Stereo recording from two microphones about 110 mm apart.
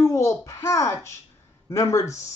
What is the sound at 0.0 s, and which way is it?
A child's voice, 25° left (ahead or behind).